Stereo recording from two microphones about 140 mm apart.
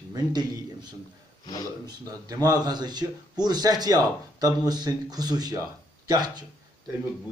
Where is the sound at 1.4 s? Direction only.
30° left (ahead or behind).